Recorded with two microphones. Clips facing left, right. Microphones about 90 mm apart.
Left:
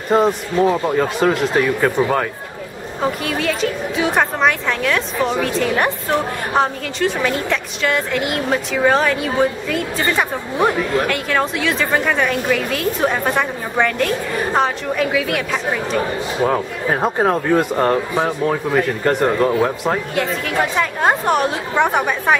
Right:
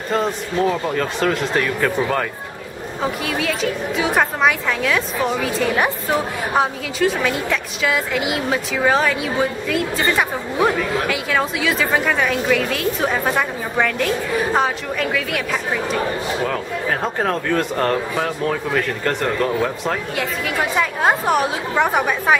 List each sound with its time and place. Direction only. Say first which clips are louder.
0.1 s a woman's voice: left 5 dB; 15° left (ahead or behind)
16.4 s speech: left 3 dB; 20° left (ahead or behind)
20.2 s a woman's voice: left 3 dB; centre (ahead or behind)